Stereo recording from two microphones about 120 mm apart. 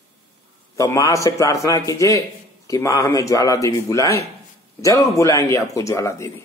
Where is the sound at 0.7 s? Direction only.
25° left (ahead or behind).